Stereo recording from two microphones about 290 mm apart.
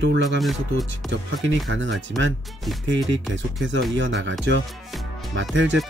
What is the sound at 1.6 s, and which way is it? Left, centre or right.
Speech, right.